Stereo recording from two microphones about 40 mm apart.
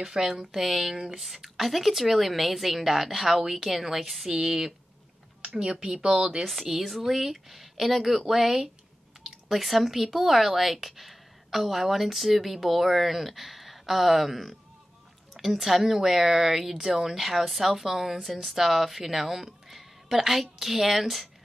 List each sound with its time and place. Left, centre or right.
0.0 s a woman's voice: centre
5.6 s a woman's voice: right
6.5 s a woman's voice: centre